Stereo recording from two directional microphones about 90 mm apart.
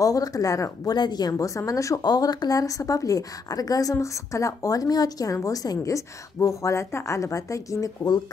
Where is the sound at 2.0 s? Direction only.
50° left (ahead or behind).